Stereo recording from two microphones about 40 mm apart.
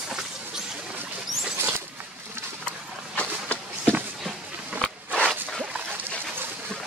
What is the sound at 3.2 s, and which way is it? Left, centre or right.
Vehicle, left.